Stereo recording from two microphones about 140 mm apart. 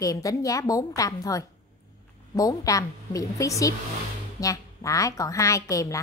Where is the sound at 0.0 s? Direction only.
25° left (ahead or behind).